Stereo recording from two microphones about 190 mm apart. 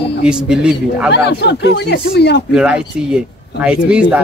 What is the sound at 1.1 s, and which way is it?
Speech, 60° left (ahead or behind).